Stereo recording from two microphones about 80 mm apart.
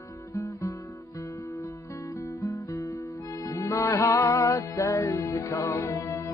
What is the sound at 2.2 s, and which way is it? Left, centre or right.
Music, left.